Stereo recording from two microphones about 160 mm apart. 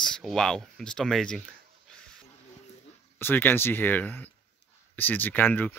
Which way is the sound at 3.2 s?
15° left (ahead or behind).